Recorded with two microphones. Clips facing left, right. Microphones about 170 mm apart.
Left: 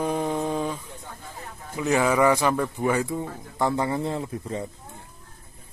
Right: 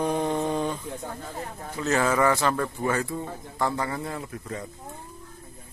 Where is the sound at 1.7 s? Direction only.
15° left (ahead or behind).